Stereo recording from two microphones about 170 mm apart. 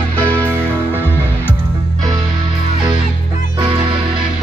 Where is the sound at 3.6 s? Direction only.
30° right (ahead or behind).